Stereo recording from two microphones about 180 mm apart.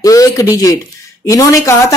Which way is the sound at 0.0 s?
20° left (ahead or behind).